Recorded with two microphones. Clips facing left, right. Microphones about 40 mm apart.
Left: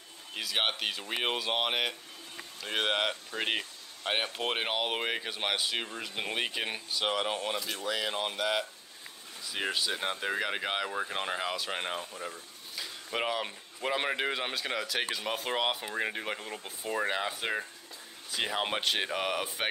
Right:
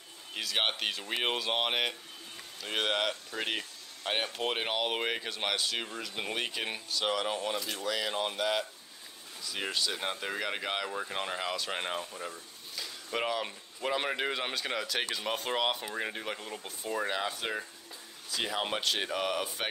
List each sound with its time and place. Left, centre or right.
0.3 s speech: centre
16.8 s speech: left